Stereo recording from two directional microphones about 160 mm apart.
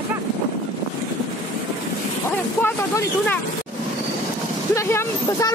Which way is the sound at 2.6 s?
15° left (ahead or behind).